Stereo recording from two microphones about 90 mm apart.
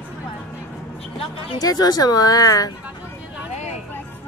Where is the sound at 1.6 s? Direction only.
45° left (ahead or behind).